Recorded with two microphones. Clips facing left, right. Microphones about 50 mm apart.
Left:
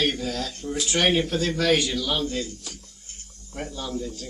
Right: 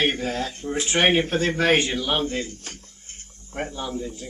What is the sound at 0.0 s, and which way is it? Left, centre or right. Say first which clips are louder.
Speech: right 2 dB; right.